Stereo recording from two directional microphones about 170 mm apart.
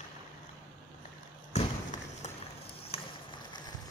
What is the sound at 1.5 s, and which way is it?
Thump, 40° left (ahead or behind).